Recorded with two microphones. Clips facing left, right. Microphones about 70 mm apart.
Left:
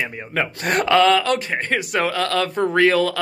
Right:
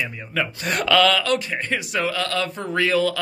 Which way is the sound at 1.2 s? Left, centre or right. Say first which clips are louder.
Left 2 dB; left.